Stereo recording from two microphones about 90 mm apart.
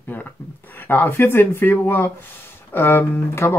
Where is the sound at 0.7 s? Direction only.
20° left (ahead or behind).